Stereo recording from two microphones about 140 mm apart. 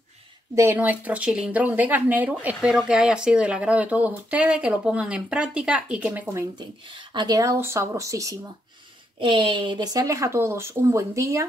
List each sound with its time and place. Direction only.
0.6 s speech: 15° right (ahead or behind)
7.2 s speech: 25° right (ahead or behind)
9.2 s speech: 35° right (ahead or behind); by 11.4 s 20° right (ahead or behind)